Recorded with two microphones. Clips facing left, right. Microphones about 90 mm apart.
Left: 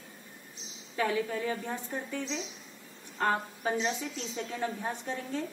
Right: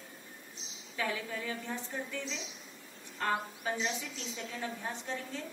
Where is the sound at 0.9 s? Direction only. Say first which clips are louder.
Left 6 dB; 35° left (ahead or behind).